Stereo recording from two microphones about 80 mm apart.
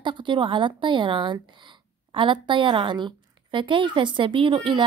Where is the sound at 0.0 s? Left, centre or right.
Right.